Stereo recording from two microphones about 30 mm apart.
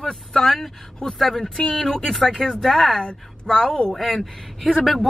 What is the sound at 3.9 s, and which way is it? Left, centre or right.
Speech, centre.